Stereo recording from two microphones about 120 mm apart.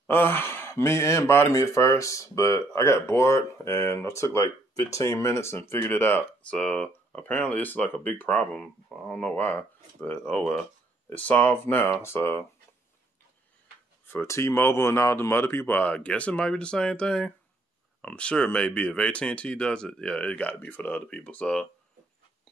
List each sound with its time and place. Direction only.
0.0 s speech: 20° left (ahead or behind)
14.0 s speech: 20° left (ahead or behind)